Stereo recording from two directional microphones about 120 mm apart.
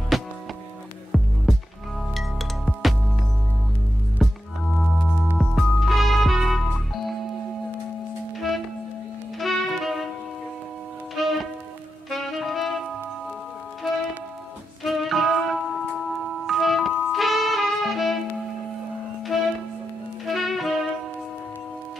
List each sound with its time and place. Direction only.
0.1 s music: centre (ahead or behind)
4.2 s music: centre (ahead or behind)
5.4 s music: centre (ahead or behind)
9.4 s music: centre (ahead or behind)
11.1 s music: centre (ahead or behind)
12.1 s saxophone: centre (ahead or behind)
14.8 s music: centre (ahead or behind)
16.4 s music: centre (ahead or behind)
19.3 s music: centre (ahead or behind)